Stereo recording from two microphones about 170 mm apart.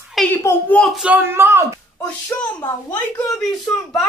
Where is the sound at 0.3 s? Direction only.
15° left (ahead or behind).